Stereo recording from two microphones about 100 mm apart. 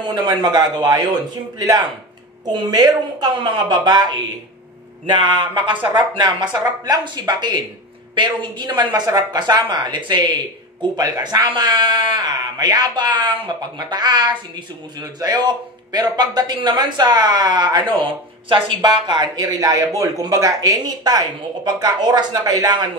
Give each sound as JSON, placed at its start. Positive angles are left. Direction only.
{"t": 0.0, "sound": "a man's voice", "side_deg": -45}